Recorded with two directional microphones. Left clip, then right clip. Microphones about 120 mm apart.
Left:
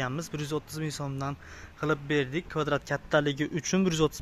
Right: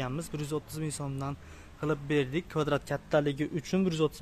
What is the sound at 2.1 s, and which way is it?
Speech, 20° right (ahead or behind).